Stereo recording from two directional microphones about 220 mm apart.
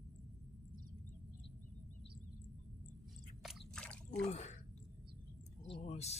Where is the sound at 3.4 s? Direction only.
5° left (ahead or behind).